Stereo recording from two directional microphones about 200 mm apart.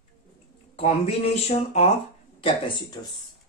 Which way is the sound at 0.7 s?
30° left (ahead or behind).